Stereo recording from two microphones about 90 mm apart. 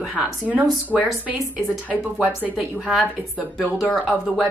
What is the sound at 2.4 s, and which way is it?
Speech, 5° right (ahead or behind).